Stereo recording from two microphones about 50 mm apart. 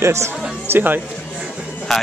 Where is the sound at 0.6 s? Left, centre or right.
Right.